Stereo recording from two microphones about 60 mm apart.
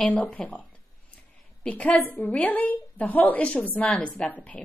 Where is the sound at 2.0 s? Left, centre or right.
Left.